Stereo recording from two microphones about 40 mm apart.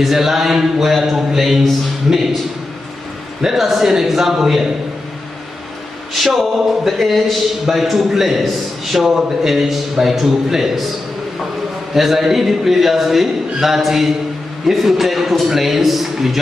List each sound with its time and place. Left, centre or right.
0.0 s a man's voice: centre
3.4 s a man's voice: centre
6.2 s a man's voice: centre
11.9 s a man's voice: centre